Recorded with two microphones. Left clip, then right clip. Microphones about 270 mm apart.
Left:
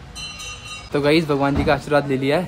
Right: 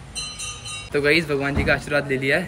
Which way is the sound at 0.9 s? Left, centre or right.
Centre.